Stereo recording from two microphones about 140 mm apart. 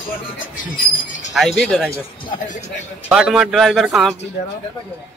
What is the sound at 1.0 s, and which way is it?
Speech, 65° left (ahead or behind).